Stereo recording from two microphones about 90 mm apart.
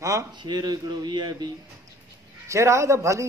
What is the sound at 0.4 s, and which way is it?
A man's voice, 50° right (ahead or behind).